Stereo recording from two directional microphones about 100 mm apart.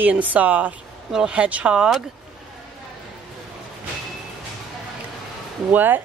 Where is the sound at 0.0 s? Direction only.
15° right (ahead or behind).